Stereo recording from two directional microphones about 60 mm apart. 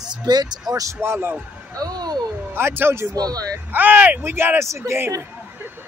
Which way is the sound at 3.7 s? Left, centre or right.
Right.